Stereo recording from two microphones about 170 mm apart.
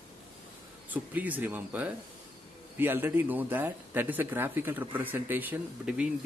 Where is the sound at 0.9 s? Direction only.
10° right (ahead or behind).